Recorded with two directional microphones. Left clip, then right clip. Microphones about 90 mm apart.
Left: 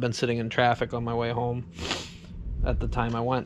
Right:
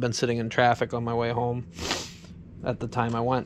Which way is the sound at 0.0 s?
5° right (ahead or behind).